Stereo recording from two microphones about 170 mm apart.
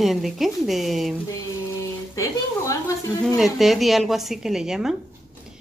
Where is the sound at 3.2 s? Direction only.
Centre (ahead or behind).